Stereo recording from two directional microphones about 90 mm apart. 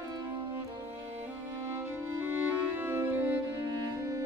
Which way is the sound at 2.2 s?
25° right (ahead or behind).